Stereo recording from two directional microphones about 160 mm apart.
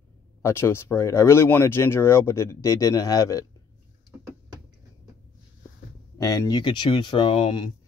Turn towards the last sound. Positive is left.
turn(degrees=30)  # may be behind; listen again after turning